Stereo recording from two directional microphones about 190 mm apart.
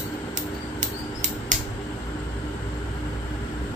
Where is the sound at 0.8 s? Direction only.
40° right (ahead or behind).